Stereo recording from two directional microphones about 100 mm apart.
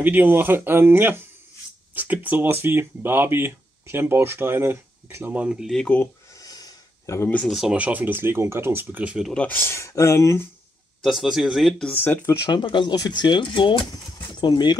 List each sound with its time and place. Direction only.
0.0 s speech: 15° right (ahead or behind)
5.4 s speech: 10° right (ahead or behind)
5.7 s speech: 5° left (ahead or behind)
6.3 s a sound: 40° left (ahead or behind)
7.2 s speech: 15° left (ahead or behind)
7.4 s speech: centre (ahead or behind)
7.7 s speech: 15° right (ahead or behind)
9.0 s speech: 10° right (ahead or behind)
9.3 s speech: 15° left (ahead or behind)
9.6 s speech: 30° left (ahead or behind)
11.0 s speech: centre (ahead or behind)
11.9 s speech: 20° left (ahead or behind)
12.6 s speech: 50° left (ahead or behind)